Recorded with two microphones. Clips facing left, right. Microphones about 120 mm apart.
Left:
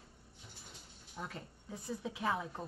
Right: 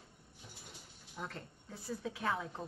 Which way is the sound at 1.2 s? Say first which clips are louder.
Even; 5° left (ahead or behind).